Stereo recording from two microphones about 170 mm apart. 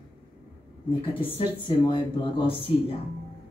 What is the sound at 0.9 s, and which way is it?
Speech, 35° left (ahead or behind).